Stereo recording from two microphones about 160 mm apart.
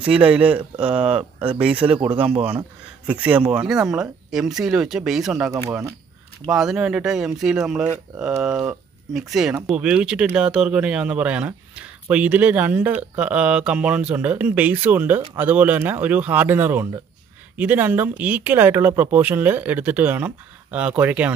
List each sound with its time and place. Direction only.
0.0 s speech: 5° right (ahead or behind)
3.1 s speech: 10° right (ahead or behind)
5.5 s speech: 15° right (ahead or behind)
6.5 s speech: 5° right (ahead or behind)